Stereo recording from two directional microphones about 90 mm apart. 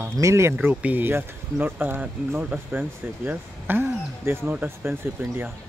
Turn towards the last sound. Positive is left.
turn(degrees=-20)  # may be behind; listen again after turning